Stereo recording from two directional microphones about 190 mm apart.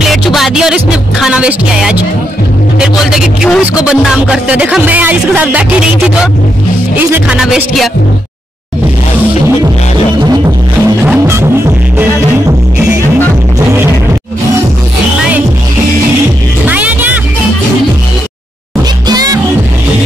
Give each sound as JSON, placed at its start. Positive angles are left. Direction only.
{"t": 0.1, "sound": "music", "side_deg": 0}
{"t": 7.0, "sound": "music", "side_deg": -10}
{"t": 11.1, "sound": "music", "side_deg": -15}
{"t": 16.6, "sound": "music", "side_deg": -10}
{"t": 19.0, "sound": "music", "side_deg": -20}